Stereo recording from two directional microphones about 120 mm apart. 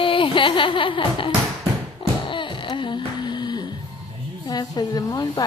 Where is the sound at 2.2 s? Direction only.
45° left (ahead or behind).